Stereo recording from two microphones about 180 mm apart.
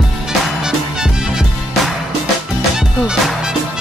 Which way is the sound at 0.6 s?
5° right (ahead or behind).